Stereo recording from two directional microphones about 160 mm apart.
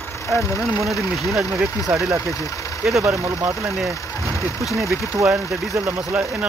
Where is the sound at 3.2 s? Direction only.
20° right (ahead or behind).